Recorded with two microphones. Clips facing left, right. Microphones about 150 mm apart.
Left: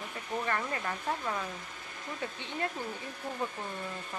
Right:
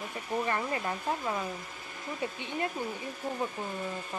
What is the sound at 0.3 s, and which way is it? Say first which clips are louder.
Speech: right 2 dB; 20° right (ahead or behind).